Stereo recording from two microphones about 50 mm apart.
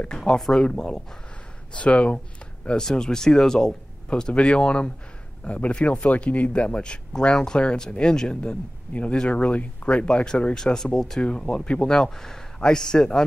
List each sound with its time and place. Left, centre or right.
0.2 s speech: centre
2.6 s speech: centre